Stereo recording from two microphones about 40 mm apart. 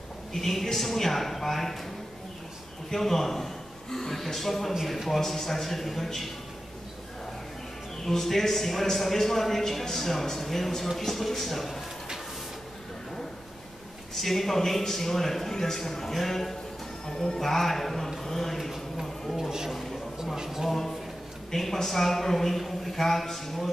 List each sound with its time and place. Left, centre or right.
0.3 s a man's voice: centre
2.9 s a man's voice: centre
8.0 s a man's voice: centre
14.1 s a man's voice: centre
17.0 s speech: centre
17.4 s speech: centre
18.2 s a sound: centre
20.4 s a man's voice: centre
21.5 s a man's voice: centre